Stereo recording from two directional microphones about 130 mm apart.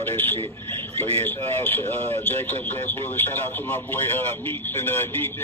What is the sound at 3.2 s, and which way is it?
Speech, 15° left (ahead or behind).